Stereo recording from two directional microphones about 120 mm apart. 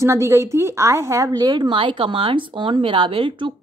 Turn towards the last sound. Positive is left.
turn(degrees=-45)  # may be behind; listen again after turning